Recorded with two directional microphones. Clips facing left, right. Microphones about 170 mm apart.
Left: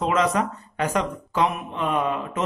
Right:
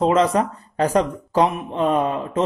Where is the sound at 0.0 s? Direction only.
30° right (ahead or behind).